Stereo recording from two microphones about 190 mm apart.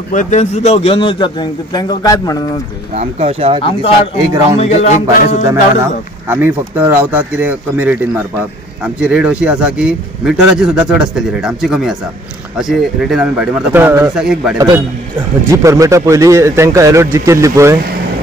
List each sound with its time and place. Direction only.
0.1 s a man's voice: 40° left (ahead or behind); by 2.4 s 20° left (ahead or behind)
2.9 s speech: 35° right (ahead or behind)
3.6 s a man's voice: 30° left (ahead or behind)
5.5 s speech: 15° right (ahead or behind)
15.4 s a man's voice: 15° right (ahead or behind)